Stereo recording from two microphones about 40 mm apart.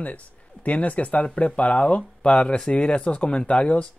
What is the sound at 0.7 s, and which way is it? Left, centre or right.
Speech, left.